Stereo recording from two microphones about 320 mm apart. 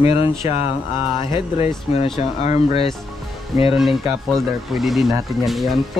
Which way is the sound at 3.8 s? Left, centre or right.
Centre.